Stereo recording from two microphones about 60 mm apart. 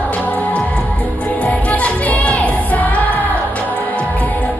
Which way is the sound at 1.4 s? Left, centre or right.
Left.